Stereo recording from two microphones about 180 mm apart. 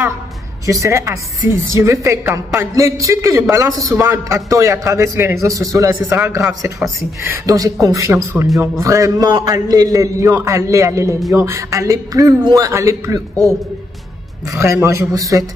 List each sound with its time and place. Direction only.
0.7 s a woman's voice: 15° right (ahead or behind)
7.2 s a woman's voice: 20° right (ahead or behind)
14.5 s a woman's voice: 15° right (ahead or behind)